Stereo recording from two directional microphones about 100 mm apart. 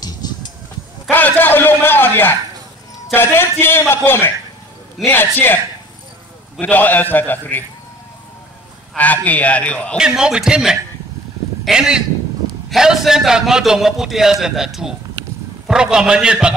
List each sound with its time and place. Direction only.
1.1 s a sound: 20° left (ahead or behind)
3.1 s a man's voice: 20° left (ahead or behind)
6.6 s a man's voice: 15° left (ahead or behind)
8.9 s a man's voice: 15° left (ahead or behind)
9.9 s a man's voice: 5° right (ahead or behind)